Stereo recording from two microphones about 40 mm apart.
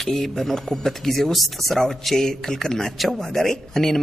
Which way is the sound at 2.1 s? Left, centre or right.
Centre.